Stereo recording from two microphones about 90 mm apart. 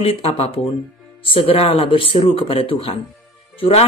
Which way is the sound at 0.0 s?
90° left.